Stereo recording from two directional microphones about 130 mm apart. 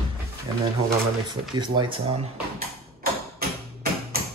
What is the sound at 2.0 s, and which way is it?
Speech, 50° right (ahead or behind).